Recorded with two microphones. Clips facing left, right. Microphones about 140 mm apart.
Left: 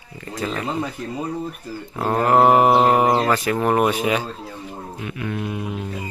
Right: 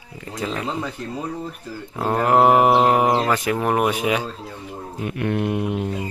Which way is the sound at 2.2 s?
10° right (ahead or behind).